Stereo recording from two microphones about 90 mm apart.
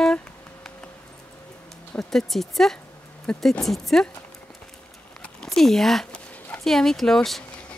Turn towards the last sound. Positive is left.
turn(degrees=5)  # may be behind; listen again after turning